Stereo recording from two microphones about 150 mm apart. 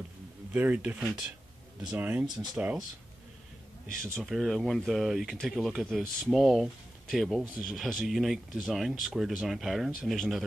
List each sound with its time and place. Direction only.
0.5 s speech: 10° right (ahead or behind)
2.2 s speech: 30° right (ahead or behind)
2.5 s speech: 10° right (ahead or behind)
4.0 s speech: centre (ahead or behind)